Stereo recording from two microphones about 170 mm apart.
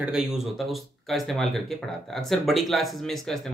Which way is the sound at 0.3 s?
Centre (ahead or behind).